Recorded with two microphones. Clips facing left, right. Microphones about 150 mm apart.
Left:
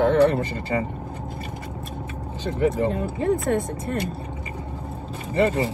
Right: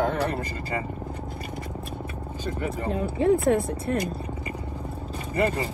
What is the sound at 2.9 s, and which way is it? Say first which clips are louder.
Speech: right 1 dB; centre (ahead or behind).